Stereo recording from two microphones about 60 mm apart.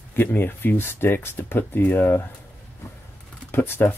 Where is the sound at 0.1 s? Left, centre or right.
Left.